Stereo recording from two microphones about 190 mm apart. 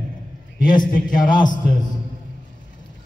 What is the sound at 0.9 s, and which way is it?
Speech, 45° left (ahead or behind).